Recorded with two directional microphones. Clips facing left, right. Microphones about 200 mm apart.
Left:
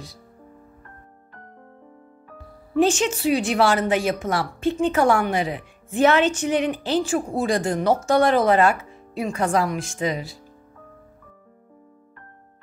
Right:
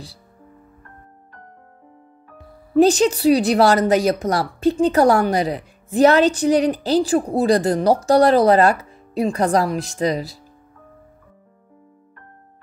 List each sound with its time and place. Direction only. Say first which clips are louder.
2.7 s speech: right 5 dB; 35° right (ahead or behind)